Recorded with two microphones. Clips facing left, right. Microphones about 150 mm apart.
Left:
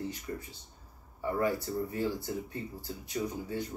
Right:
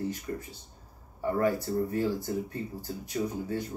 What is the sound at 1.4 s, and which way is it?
Speech, 45° right (ahead or behind).